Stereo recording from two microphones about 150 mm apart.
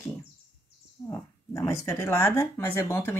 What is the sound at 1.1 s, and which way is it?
Speech, 20° left (ahead or behind).